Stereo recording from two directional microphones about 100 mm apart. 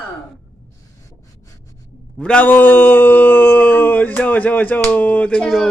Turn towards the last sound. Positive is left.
turn(degrees=5)  # may be behind; listen again after turning